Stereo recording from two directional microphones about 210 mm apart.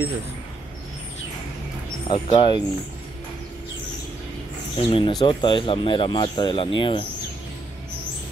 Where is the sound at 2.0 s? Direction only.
20° left (ahead or behind).